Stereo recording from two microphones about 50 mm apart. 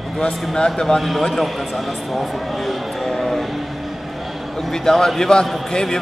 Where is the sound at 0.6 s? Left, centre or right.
Centre.